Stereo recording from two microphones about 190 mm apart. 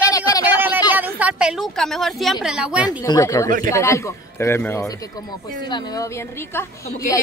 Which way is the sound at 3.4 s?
45° right (ahead or behind).